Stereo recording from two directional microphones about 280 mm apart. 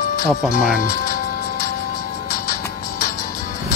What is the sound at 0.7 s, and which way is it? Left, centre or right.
Music, left.